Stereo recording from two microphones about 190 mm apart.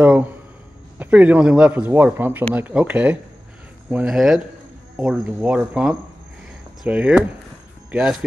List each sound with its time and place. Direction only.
0.0 s a man's voice: 10° right (ahead or behind)